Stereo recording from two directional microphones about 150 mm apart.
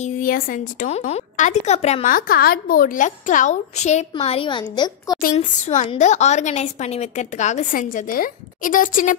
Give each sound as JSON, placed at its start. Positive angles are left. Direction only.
{"t": 0.0, "sound": "speech", "side_deg": 70}
{"t": 0.8, "sound": "a woman's voice", "side_deg": 45}
{"t": 2.0, "sound": "a woman's voice", "side_deg": 65}
{"t": 5.2, "sound": "a woman's voice", "side_deg": 55}